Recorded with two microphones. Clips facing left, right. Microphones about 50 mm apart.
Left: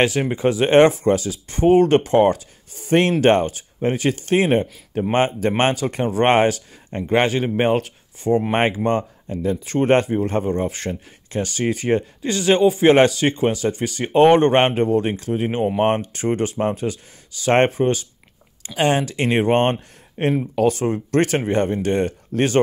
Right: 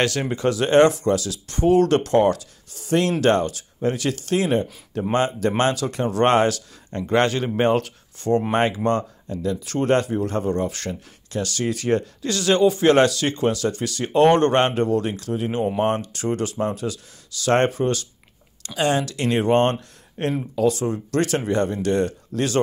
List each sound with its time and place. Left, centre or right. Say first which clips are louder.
0.0 s speech: left 3 dB; centre
8.5 s speech: left 1 dB; left
20.6 s speech: left 1 dB; left